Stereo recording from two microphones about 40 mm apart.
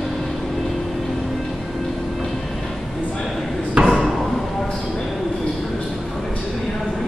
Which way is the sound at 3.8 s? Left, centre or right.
Centre.